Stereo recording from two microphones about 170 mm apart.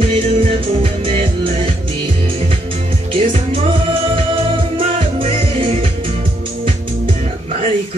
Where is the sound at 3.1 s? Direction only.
35° right (ahead or behind).